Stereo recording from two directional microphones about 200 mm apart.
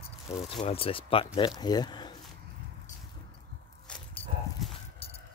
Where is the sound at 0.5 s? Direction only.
25° left (ahead or behind).